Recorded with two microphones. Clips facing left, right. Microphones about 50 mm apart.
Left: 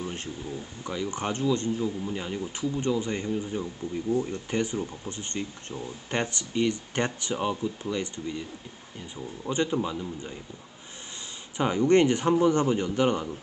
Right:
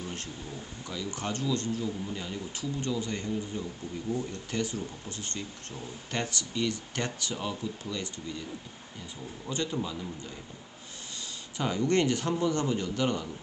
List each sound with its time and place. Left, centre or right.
0.0 s a sound: left
0.8 s speech: left
9.5 s speech: left
11.5 s speech: left